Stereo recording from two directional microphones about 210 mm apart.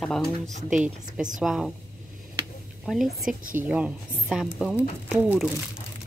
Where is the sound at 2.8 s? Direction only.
Centre (ahead or behind).